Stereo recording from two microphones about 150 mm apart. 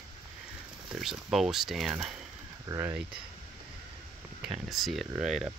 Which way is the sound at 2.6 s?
20° right (ahead or behind).